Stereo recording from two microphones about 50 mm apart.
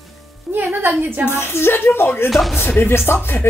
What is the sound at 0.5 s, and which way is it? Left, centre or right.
Speech, right.